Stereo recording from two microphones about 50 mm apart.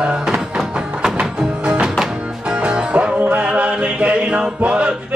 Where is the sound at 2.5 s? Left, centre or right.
Right.